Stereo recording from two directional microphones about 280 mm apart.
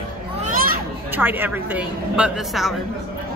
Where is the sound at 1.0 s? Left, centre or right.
Centre.